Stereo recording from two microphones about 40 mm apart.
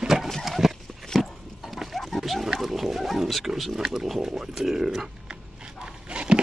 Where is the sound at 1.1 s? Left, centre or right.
Centre.